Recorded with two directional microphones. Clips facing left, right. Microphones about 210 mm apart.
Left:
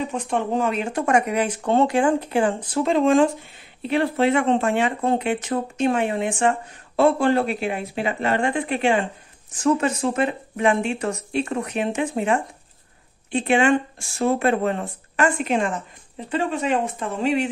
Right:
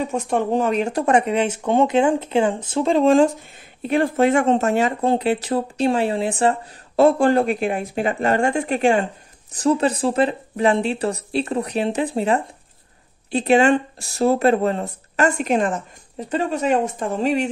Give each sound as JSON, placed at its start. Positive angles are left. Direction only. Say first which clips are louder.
{"t": 0.1, "sound": "speech", "louder": "right 3 dB", "side_deg": -45}
{"t": 3.8, "sound": "speech", "louder": "right 2 dB", "side_deg": -45}